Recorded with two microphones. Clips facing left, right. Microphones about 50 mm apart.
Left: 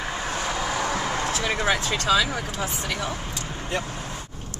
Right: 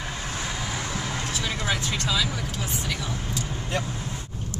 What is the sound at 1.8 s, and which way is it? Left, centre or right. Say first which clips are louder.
Speech: left 5 dB; left.